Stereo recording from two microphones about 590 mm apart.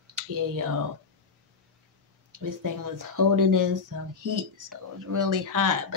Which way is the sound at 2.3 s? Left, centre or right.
Right.